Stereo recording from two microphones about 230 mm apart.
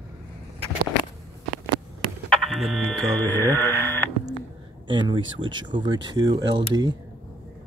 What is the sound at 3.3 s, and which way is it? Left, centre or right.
Radio, centre.